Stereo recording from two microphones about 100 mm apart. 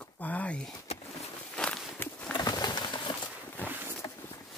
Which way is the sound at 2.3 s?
45° left (ahead or behind).